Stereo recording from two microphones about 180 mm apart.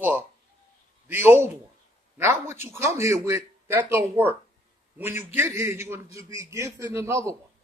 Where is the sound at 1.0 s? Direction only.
10° right (ahead or behind).